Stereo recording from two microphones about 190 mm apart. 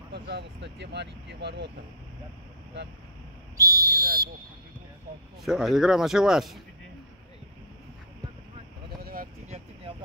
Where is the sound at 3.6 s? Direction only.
20° right (ahead or behind).